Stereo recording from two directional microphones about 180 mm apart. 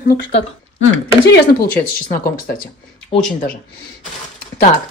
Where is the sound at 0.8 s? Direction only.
90° left.